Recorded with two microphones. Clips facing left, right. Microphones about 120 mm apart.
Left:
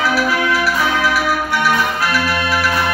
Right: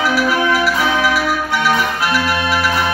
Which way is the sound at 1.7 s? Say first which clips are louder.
Right 1 dB; 20° right (ahead or behind).